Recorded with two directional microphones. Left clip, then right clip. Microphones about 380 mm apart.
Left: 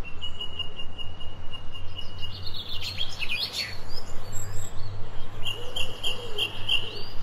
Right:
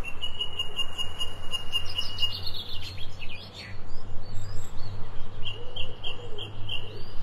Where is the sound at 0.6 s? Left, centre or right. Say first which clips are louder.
Even; centre.